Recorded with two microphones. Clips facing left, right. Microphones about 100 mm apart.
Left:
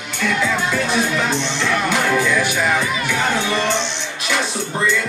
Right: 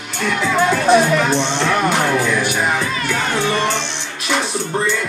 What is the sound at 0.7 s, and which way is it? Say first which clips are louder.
Speech: right 6 dB; 50° right (ahead or behind).